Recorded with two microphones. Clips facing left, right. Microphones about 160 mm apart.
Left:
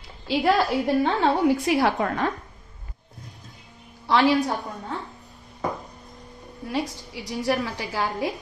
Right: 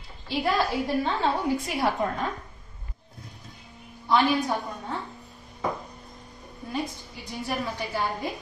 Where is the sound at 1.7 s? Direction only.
90° left.